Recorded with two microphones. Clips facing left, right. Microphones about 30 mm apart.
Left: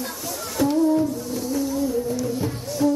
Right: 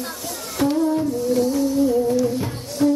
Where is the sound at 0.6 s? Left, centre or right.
Right.